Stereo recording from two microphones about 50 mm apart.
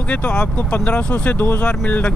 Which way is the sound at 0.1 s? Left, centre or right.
Left.